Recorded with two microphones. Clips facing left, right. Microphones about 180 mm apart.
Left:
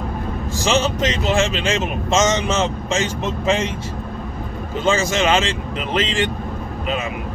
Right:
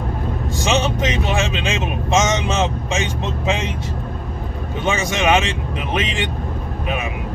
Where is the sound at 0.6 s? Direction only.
20° right (ahead or behind).